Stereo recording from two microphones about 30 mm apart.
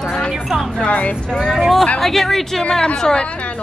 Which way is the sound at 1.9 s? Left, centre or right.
Centre.